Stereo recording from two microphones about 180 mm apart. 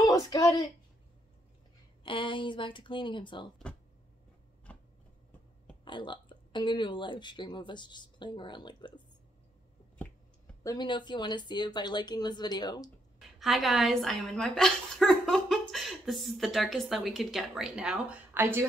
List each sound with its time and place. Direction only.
0.0 s speech: 20° left (ahead or behind)
2.0 s a woman's voice: 30° left (ahead or behind)
4.7 s a sound: 10° left (ahead or behind)
5.9 s a woman's voice: 25° left (ahead or behind)
10.6 s a woman's voice: 20° left (ahead or behind)
13.4 s speech: centre (ahead or behind)